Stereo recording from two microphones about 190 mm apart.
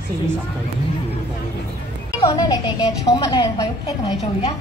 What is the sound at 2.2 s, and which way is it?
A woman's voice, 20° left (ahead or behind).